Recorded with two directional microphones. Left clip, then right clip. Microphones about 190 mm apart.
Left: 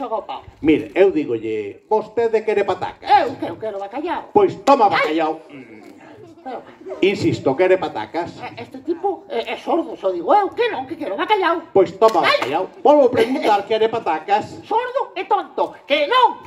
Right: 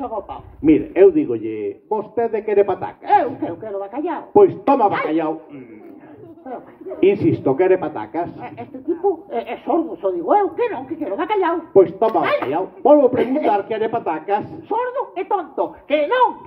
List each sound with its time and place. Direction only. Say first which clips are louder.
0.0 s a man's voice: left 2 dB; 30° left (ahead or behind)
7.0 s a man's voice: right 2 dB; 30° left (ahead or behind)